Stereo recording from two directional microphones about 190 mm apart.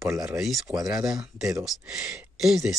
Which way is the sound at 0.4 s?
Centre (ahead or behind).